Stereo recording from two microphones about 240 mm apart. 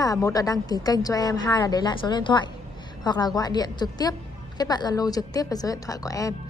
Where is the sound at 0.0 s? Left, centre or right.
Centre.